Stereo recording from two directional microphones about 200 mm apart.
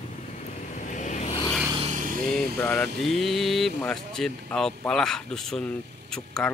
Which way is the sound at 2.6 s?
5° left (ahead or behind).